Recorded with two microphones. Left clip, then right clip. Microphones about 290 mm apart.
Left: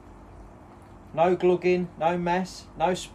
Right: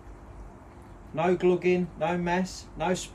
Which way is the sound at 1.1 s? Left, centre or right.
Centre.